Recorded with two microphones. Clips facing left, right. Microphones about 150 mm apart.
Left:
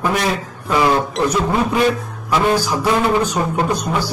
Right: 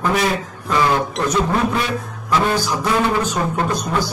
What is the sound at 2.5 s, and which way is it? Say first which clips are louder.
Speech: left 2 dB; 10° left (ahead or behind).